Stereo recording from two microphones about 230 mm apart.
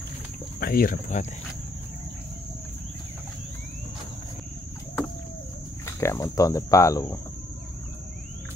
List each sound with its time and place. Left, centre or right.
0.6 s speech: left
5.9 s speech: centre